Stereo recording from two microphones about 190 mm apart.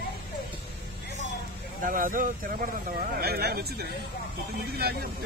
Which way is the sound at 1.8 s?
45° right (ahead or behind).